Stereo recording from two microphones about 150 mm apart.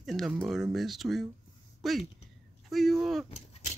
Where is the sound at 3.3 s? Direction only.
50° left (ahead or behind).